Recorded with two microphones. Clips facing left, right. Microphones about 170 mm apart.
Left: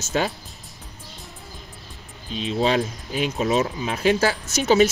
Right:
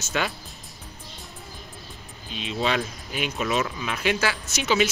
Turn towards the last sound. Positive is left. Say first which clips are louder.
# left 6 dB
turn(degrees=40)  # may be behind; listen again after turning